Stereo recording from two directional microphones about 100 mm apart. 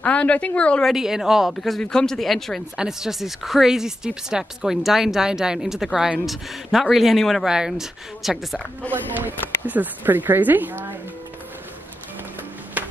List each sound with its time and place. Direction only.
0.0 s a woman's voice: 15° left (ahead or behind)
0.9 s speech: 5° right (ahead or behind)
8.9 s speech: 20° right (ahead or behind)
12.8 s a sound: 15° right (ahead or behind)